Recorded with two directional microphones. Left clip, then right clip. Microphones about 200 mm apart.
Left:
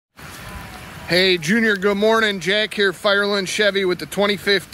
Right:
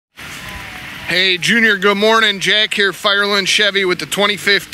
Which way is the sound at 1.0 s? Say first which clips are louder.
Right 3 dB; 5° left (ahead or behind).